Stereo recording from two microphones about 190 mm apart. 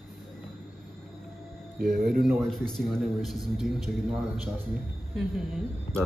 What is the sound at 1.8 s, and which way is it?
Speech, 55° right (ahead or behind).